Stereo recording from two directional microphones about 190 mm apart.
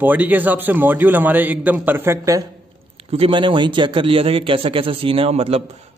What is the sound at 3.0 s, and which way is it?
A man's voice, 30° right (ahead or behind).